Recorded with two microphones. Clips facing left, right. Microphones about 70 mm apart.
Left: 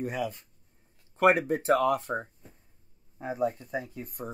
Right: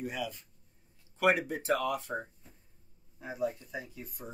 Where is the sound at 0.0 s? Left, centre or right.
Left.